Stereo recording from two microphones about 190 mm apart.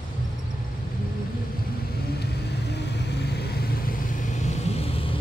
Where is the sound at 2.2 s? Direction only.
60° left (ahead or behind).